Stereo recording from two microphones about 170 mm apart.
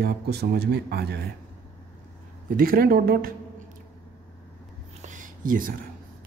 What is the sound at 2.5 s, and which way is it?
Speech, 60° right (ahead or behind).